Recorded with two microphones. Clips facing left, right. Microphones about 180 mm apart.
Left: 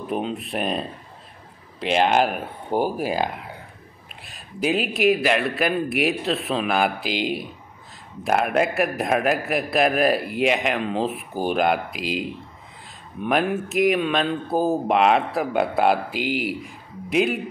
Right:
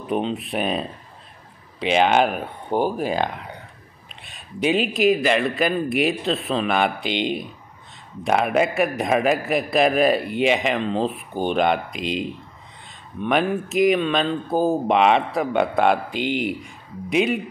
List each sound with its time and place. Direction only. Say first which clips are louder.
0.0 s speech: right 2 dB; centre (ahead or behind)